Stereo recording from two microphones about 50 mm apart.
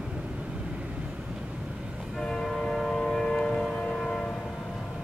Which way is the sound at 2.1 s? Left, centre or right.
Centre.